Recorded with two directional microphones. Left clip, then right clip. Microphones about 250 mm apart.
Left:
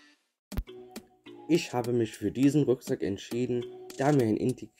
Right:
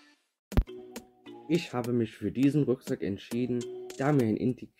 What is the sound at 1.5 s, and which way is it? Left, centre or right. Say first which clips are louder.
Speech: left 3 dB; left.